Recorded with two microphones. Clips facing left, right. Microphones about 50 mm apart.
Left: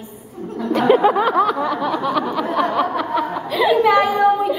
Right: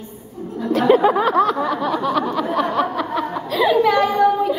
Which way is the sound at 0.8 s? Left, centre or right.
Centre.